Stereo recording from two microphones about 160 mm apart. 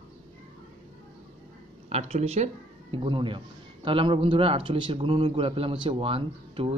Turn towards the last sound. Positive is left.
turn(degrees=-35)  # may be behind; listen again after turning